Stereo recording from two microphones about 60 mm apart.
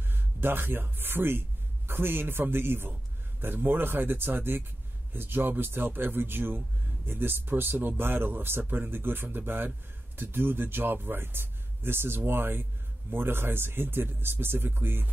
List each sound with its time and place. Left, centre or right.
0.1 s speech: right